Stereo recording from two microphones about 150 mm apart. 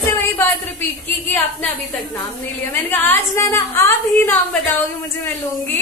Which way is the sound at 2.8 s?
15° left (ahead or behind).